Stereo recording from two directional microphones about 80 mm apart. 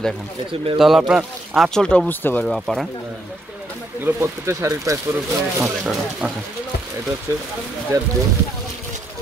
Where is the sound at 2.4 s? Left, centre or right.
Centre.